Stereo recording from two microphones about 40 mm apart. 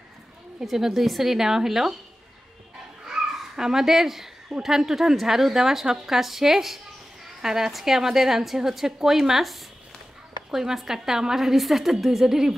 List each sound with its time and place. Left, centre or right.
0.7 s a woman's voice: centre
3.1 s cat: centre
4.6 s a woman's voice: centre